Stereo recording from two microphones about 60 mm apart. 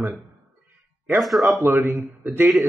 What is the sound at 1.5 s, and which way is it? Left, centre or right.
Speech, right.